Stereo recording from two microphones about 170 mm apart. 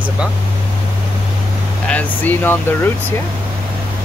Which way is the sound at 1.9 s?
10° left (ahead or behind).